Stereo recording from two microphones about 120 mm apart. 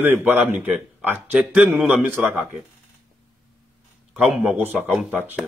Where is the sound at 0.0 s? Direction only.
15° right (ahead or behind).